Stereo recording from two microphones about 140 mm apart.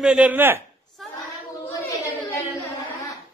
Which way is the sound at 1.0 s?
Centre (ahead or behind).